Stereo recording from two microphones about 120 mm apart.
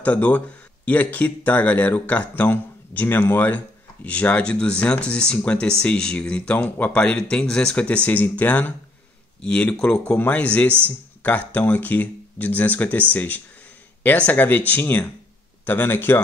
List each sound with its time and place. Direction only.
0.0 s a man's voice: 10° left (ahead or behind)